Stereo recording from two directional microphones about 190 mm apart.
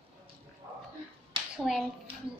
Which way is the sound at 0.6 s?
15° right (ahead or behind).